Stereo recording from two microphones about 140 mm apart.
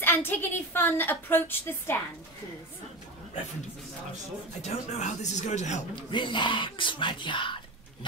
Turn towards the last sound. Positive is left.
turn(degrees=35)  # may be behind; listen again after turning